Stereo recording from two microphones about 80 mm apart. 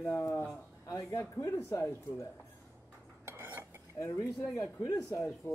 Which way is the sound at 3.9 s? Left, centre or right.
Left.